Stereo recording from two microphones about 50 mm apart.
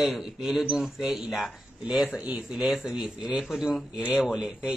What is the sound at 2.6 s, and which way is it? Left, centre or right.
Speech, centre.